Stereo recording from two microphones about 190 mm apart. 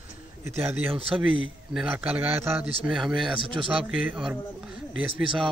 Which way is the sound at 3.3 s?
25° right (ahead or behind).